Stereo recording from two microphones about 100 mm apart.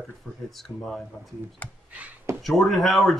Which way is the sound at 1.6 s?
15° left (ahead or behind).